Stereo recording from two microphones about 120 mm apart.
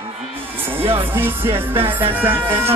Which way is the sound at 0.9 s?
15° right (ahead or behind).